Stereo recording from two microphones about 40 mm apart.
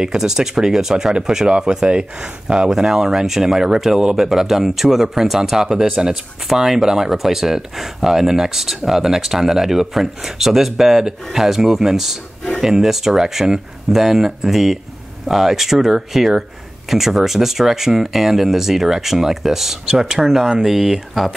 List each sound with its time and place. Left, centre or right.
0.0 s speech: centre
5.9 s speech: right
6.5 s speech: centre